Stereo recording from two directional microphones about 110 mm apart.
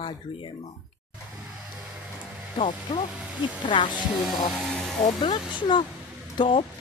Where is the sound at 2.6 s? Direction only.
50° left (ahead or behind).